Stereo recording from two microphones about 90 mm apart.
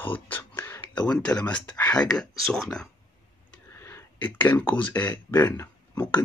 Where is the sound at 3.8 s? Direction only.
30° left (ahead or behind).